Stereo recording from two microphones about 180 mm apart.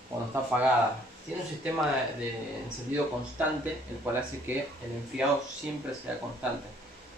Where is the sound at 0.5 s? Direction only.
5° right (ahead or behind).